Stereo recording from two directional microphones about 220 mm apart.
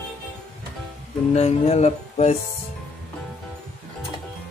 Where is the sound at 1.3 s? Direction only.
30° left (ahead or behind).